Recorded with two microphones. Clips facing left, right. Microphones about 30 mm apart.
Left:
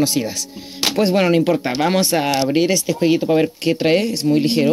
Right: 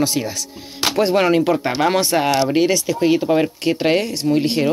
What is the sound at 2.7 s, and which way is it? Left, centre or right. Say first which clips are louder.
Speech: even; left.